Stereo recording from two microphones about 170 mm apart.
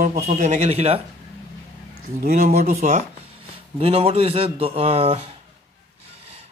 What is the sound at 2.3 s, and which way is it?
Speech, 55° right (ahead or behind).